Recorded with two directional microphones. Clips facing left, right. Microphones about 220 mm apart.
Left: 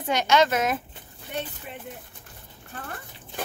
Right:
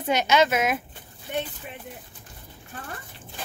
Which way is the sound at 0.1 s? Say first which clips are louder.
Even; 15° right (ahead or behind).